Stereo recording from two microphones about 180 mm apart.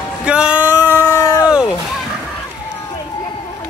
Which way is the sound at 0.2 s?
5° right (ahead or behind).